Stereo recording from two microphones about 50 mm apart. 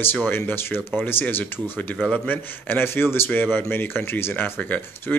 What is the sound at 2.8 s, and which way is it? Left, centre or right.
Speech, left.